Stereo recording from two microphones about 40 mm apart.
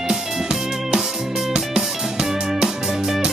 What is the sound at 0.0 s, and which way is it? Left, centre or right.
Music, centre.